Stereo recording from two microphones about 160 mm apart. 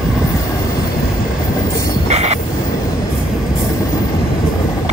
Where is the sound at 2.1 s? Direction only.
45° right (ahead or behind).